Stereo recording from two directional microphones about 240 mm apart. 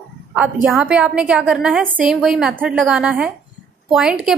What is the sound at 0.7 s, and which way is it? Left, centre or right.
A woman's voice, centre.